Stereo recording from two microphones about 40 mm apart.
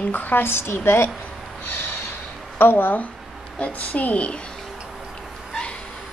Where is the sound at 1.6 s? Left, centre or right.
Left.